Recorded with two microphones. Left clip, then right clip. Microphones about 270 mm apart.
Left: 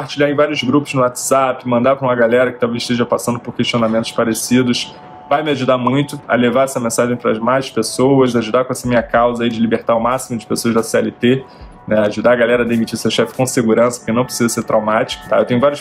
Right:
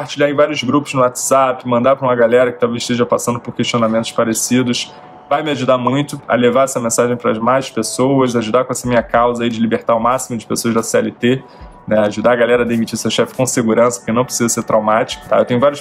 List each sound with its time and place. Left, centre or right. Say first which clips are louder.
0.2 s a man's voice: right 1 dB; centre